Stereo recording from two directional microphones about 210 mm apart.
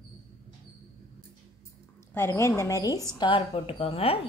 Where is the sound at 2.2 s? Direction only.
15° left (ahead or behind).